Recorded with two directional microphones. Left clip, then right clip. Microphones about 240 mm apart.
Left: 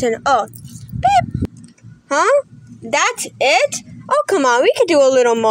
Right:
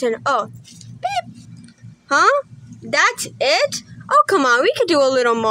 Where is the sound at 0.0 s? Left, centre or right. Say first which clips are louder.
Left 3 dB; centre.